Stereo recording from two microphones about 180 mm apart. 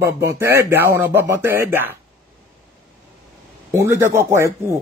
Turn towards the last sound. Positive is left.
turn(degrees=-15)  # may be behind; listen again after turning